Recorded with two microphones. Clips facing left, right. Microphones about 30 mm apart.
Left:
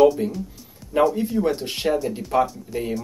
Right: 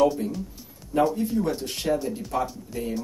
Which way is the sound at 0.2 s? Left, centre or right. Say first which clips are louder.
Left 4 dB; left.